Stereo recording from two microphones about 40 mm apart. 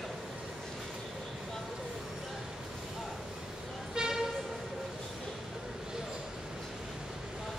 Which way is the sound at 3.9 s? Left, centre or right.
Centre.